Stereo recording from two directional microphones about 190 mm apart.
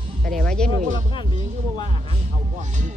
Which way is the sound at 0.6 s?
40° right (ahead or behind).